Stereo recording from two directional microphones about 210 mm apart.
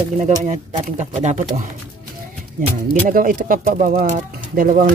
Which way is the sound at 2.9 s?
40° right (ahead or behind).